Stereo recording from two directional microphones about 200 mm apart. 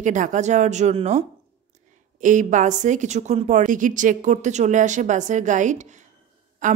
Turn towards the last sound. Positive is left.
turn(degrees=-40)  # may be behind; listen again after turning